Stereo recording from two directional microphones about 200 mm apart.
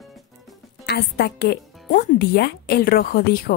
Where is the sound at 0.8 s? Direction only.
55° left (ahead or behind).